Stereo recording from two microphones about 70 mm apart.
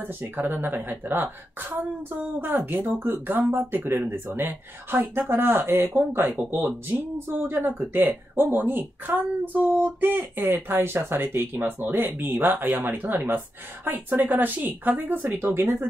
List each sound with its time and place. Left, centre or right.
0.0 s speech: right
7.2 s speech: right